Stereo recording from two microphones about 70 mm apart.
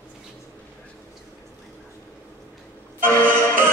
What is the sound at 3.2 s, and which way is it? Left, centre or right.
Music, right.